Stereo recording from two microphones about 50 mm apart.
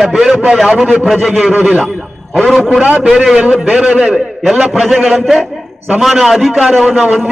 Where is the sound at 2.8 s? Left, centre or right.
Right.